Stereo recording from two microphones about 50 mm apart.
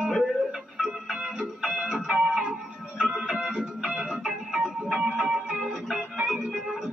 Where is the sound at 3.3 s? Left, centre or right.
Centre.